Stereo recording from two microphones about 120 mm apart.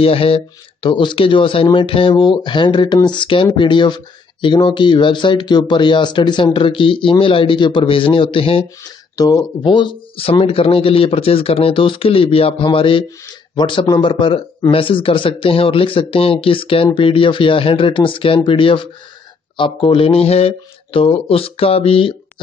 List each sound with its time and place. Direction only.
0.0 s speech: 50° left (ahead or behind)
8.8 s speech: 30° left (ahead or behind)
9.6 s speech: 45° left (ahead or behind)